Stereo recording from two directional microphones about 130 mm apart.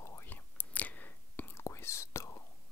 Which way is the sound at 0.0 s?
20° left (ahead or behind).